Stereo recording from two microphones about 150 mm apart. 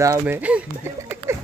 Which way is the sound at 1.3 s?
15° right (ahead or behind).